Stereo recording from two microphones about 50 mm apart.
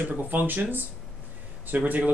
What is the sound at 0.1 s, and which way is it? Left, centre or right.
Speech, right.